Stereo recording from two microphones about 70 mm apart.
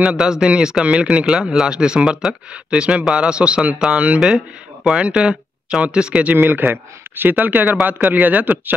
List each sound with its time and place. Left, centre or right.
0.0 s speech: centre
6.3 s speech: right